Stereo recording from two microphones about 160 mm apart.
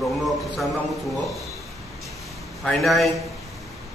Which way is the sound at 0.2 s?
Centre (ahead or behind).